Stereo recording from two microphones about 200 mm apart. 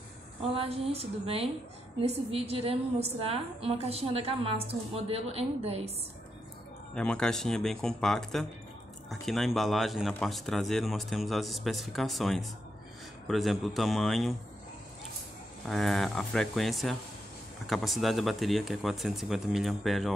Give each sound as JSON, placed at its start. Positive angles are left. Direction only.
{"t": 0.4, "sound": "a woman's voice", "side_deg": -30}
{"t": 7.0, "sound": "speech", "side_deg": 5}
{"t": 15.7, "sound": "speech", "side_deg": 0}